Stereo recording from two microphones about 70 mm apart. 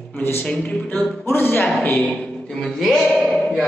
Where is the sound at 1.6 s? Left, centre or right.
Centre.